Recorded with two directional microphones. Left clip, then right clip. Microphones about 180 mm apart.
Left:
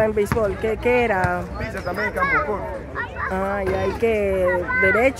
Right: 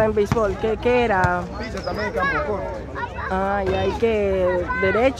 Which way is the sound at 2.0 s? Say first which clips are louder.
Left 2 dB; 15° right (ahead or behind).